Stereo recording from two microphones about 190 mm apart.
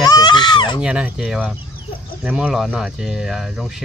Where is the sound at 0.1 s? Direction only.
25° left (ahead or behind).